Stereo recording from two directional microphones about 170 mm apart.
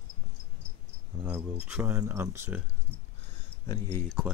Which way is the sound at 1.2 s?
5° right (ahead or behind).